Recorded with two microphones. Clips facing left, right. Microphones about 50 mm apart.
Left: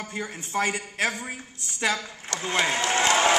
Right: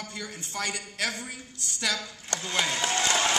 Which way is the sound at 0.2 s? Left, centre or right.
Left.